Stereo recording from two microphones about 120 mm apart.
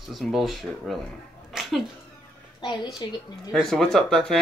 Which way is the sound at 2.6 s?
40° left (ahead or behind).